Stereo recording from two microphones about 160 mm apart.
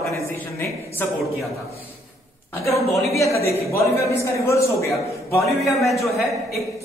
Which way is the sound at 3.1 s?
20° left (ahead or behind).